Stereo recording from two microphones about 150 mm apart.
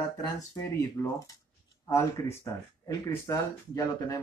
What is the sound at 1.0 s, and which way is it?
Speech, 25° left (ahead or behind).